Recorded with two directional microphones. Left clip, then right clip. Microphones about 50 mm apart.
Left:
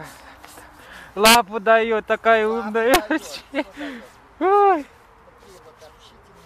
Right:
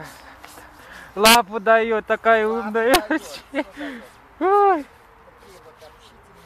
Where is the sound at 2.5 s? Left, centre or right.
Left.